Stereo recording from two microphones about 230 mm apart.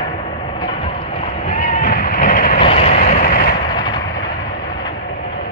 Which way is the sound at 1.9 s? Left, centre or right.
Left.